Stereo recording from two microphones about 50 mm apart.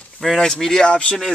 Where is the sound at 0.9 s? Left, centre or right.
Left.